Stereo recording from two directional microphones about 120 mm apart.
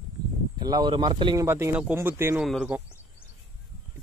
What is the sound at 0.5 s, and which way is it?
Speech, 35° right (ahead or behind).